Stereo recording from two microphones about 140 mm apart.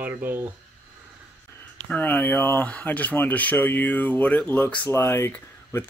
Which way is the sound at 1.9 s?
10° left (ahead or behind).